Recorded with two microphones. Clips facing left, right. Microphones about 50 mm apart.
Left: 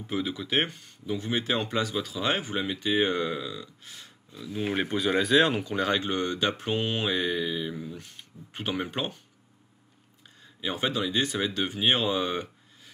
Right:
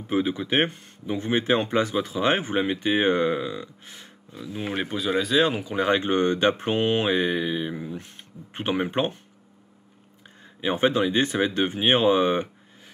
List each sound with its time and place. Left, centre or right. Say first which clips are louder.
0.1 s speech: right 5 dB; right
4.6 s speech: left 1 dB; centre
5.8 s speech: right 8 dB; right
10.4 s speech: right 7 dB; right